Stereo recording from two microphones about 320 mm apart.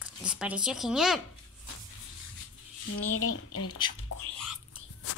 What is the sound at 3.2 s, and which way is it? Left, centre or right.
Speech, left.